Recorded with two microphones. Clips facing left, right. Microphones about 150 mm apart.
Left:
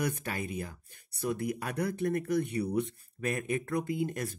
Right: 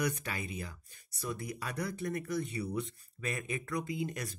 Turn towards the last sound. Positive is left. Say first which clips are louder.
# left 5 dB
turn(degrees=50)  # may be behind; listen again after turning